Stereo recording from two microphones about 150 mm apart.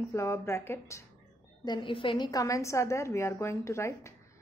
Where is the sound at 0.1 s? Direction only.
20° left (ahead or behind).